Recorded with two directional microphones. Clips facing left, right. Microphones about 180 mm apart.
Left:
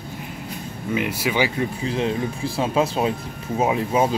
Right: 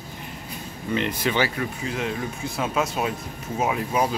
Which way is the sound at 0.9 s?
10° left (ahead or behind).